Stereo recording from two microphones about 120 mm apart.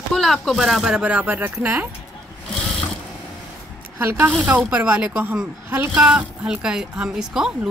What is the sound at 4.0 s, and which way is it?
A woman's voice, 20° right (ahead or behind).